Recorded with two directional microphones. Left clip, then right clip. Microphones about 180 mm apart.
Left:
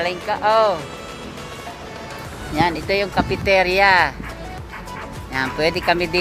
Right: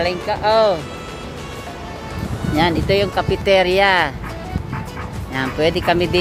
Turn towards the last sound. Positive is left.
turn(degrees=-5)  # may be behind; listen again after turning